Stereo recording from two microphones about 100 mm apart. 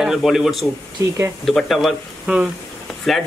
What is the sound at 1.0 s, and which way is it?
Speech, 30° right (ahead or behind).